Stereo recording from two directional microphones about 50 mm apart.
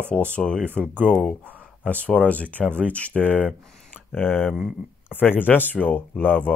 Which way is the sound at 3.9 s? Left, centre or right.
Left.